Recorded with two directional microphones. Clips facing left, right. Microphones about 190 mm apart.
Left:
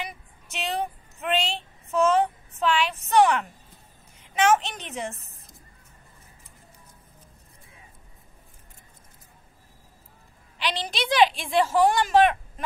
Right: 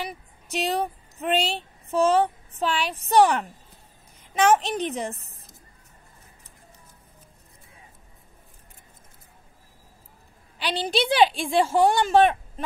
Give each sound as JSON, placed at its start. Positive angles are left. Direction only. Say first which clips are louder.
{"t": 0.0, "sound": "a woman's voice", "louder": "right 3 dB", "side_deg": -35}
{"t": 10.9, "sound": "speech", "louder": "right 2 dB", "side_deg": -30}